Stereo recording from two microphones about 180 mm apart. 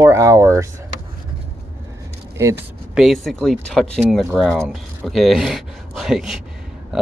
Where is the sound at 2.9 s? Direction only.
Centre (ahead or behind).